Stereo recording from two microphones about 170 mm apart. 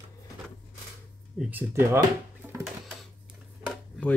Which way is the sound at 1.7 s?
15° right (ahead or behind).